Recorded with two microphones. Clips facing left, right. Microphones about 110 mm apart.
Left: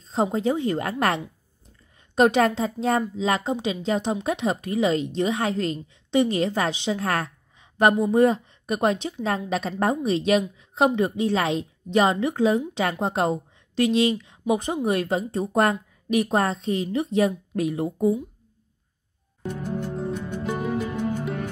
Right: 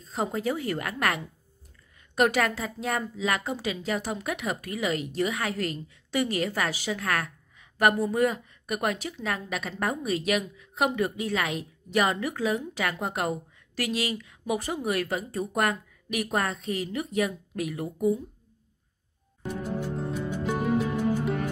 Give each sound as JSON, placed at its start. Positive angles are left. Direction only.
{"t": 0.0, "sound": "a woman's voice", "side_deg": 30}
{"t": 10.6, "sound": "a sound", "side_deg": 30}
{"t": 11.0, "sound": "a woman's voice", "side_deg": 25}
{"t": 19.4, "sound": "music", "side_deg": -5}